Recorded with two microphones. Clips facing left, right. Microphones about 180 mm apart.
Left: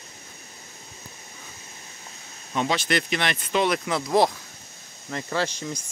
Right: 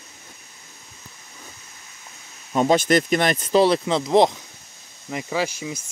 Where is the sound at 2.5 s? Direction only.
45° right (ahead or behind).